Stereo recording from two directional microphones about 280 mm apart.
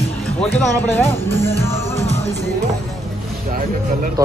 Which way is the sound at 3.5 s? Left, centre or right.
Right.